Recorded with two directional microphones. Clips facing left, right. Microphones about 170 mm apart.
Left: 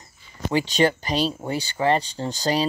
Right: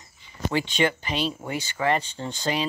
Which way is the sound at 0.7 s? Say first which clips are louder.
Left 4 dB; 40° left (ahead or behind).